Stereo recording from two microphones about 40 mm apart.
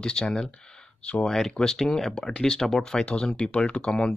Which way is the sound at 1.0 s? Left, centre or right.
Left.